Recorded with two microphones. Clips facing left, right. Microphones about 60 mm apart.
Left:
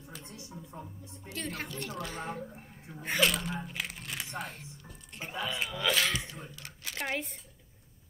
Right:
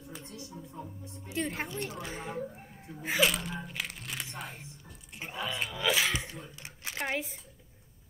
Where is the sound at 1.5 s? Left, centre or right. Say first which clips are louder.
Right 2 dB; right.